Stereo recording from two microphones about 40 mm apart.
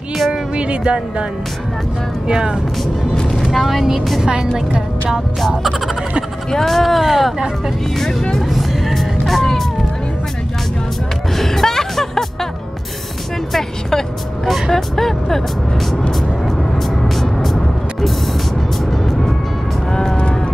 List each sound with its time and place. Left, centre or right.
0.3 s a sound: right
2.2 s speech: centre
3.4 s a woman's voice: centre
6.5 s speech: centre
8.0 s speech: centre
8.5 s music: centre
11.3 s music: centre
13.5 s speech: centre
17.1 s music: centre
19.0 s music: centre